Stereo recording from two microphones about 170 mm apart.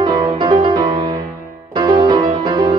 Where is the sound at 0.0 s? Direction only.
25° right (ahead or behind).